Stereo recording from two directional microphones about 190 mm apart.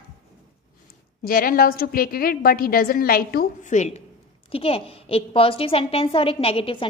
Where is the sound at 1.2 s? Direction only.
50° left (ahead or behind).